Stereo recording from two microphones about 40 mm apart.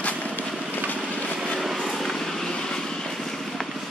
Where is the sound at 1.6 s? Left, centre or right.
Centre.